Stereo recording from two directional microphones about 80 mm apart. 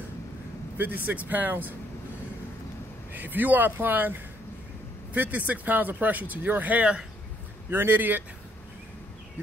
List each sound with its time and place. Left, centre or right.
0.7 s speech: right
3.1 s speech: right
7.7 s speech: right